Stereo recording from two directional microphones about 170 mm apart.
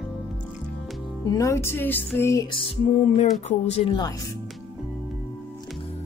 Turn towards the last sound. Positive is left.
turn(degrees=30)  # may be behind; listen again after turning